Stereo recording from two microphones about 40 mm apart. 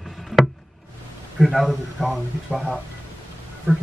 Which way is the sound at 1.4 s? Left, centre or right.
Centre.